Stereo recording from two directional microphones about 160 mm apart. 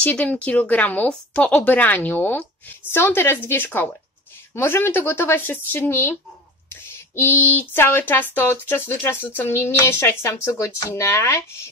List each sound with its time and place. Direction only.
0.0 s speech: 10° left (ahead or behind)